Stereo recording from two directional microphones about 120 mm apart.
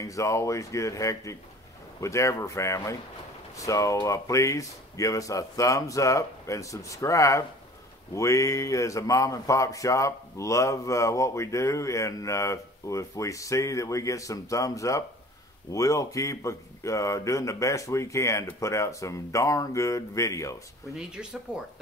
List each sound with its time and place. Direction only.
0.0 s speech: 25° left (ahead or behind)
21.1 s speech: 5° right (ahead or behind)